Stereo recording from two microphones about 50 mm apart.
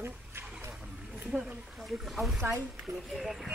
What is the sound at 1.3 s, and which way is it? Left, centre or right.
Speech, centre.